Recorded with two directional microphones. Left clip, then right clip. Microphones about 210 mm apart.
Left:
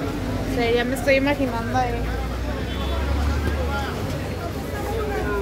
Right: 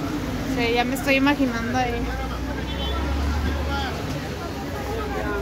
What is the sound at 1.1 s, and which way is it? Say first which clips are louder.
Speech: left 2 dB; 45° right (ahead or behind).